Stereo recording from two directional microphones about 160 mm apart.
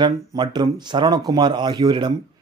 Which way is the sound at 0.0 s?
25° right (ahead or behind).